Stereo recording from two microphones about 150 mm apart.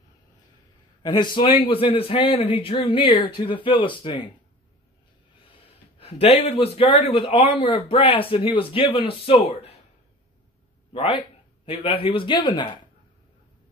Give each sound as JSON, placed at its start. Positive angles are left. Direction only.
{"t": 1.0, "sound": "speech", "side_deg": 30}
{"t": 5.5, "sound": "a man's voice", "side_deg": 40}
{"t": 10.9, "sound": "speech", "side_deg": 40}